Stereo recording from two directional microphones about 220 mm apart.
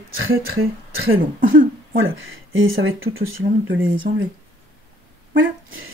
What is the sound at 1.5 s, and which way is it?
Speech, 65° right (ahead or behind).